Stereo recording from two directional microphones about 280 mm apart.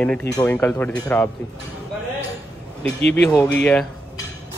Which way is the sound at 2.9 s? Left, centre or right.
Left.